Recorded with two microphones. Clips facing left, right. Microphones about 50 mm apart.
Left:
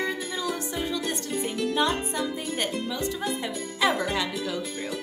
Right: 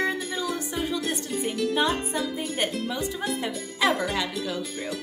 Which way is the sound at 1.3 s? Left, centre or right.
Centre.